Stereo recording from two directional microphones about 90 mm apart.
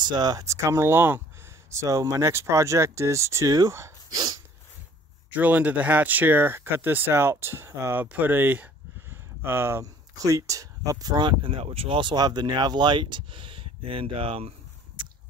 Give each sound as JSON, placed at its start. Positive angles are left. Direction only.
{"t": 0.0, "sound": "speech", "side_deg": -50}
{"t": 1.7, "sound": "speech", "side_deg": -35}
{"t": 4.1, "sound": "dog", "side_deg": -50}
{"t": 5.3, "sound": "speech", "side_deg": -20}